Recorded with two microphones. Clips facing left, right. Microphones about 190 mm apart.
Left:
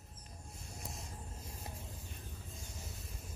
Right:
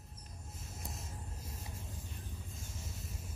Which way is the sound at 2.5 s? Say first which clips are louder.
Right 1 dB; centre (ahead or behind).